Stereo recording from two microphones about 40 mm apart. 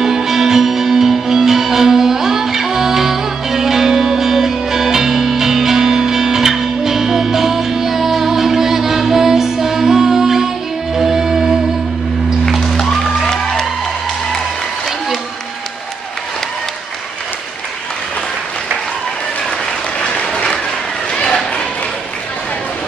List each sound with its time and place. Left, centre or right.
0.0 s music: centre
12.7 s music: centre
20.0 s applause: left